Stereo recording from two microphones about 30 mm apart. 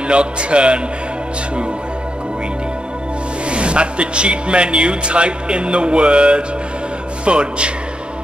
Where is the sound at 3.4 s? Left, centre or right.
Right.